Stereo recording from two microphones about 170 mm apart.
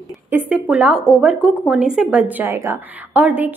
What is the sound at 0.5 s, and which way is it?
A woman's voice, 10° right (ahead or behind).